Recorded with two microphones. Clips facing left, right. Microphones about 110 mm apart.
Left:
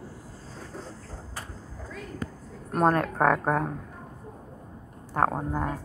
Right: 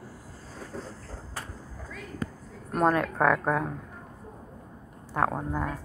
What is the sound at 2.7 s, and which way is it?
A woman's voice, 45° left (ahead or behind).